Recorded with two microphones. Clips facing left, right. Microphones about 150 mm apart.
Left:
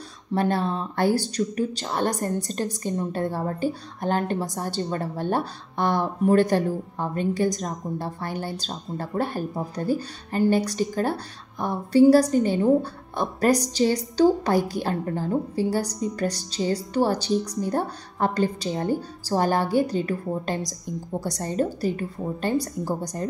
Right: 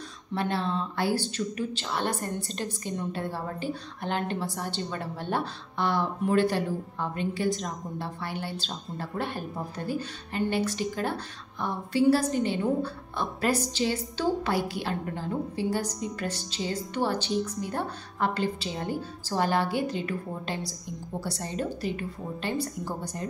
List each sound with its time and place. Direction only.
0.3 s a woman's voice: 45° left (ahead or behind)